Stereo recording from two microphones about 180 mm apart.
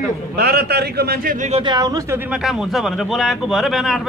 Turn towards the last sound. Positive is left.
turn(degrees=0)  # may be behind; listen again after turning